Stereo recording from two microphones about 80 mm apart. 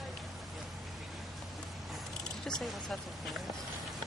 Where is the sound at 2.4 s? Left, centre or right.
Centre.